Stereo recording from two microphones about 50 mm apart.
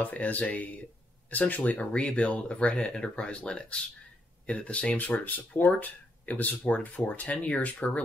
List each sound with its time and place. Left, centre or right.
0.0 s speech: left